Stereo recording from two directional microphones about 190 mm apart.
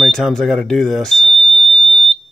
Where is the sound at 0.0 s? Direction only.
Centre (ahead or behind).